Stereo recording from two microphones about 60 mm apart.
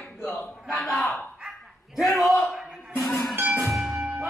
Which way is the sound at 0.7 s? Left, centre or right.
Centre.